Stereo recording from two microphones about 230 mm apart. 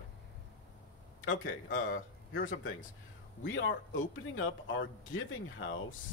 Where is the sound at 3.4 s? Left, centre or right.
Left.